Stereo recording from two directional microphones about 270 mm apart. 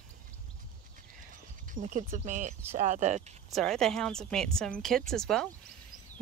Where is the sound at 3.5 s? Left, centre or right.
Centre.